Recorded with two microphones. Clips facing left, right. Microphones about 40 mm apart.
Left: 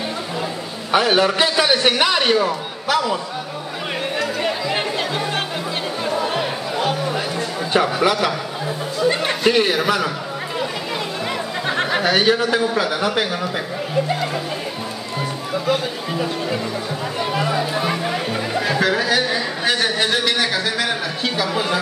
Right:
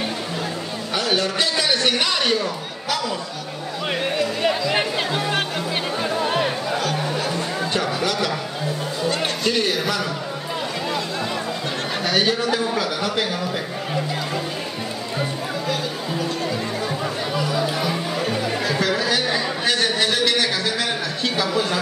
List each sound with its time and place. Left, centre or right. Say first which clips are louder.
0.9 s a man's voice: left 6 dB; left
4.7 s music: even; centre
7.7 s a man's voice: left 8 dB; left
9.4 s a man's voice: left 7 dB; left
11.6 s a sound: left 6 dB; left
12.0 s a man's voice: left 2 dB; centre
18.7 s a sound: left 4 dB; centre